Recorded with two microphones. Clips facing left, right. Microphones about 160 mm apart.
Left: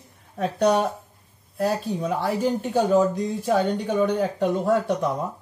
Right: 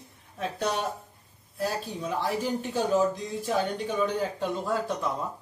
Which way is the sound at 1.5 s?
65° left (ahead or behind).